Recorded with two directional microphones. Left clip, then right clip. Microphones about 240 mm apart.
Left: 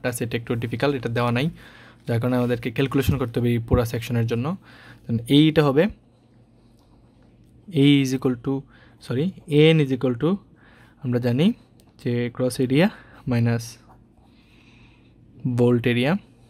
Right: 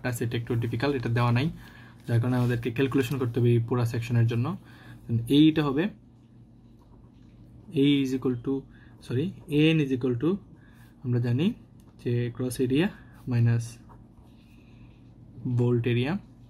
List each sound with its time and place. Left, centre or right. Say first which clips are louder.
0.0 s speech: left 5 dB; left
7.7 s speech: left 5 dB; left
15.5 s speech: left 7 dB; left